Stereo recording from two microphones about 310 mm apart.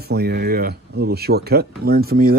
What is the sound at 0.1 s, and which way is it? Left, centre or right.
Speech, right.